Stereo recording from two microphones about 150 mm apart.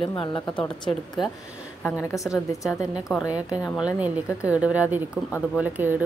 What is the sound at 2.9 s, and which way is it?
Speech, 5° right (ahead or behind).